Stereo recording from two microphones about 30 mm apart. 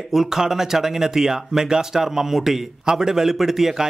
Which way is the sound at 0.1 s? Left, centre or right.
Centre.